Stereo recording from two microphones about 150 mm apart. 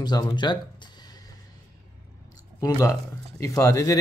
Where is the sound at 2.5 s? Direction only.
20° left (ahead or behind).